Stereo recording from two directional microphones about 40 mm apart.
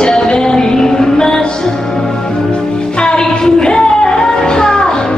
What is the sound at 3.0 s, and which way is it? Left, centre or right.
Music, centre.